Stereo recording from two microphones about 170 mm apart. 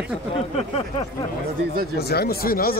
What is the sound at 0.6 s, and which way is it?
Speech, 35° left (ahead or behind).